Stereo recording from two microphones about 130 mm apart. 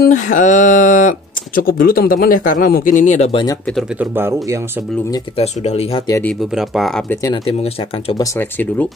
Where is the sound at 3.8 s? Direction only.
5° right (ahead or behind).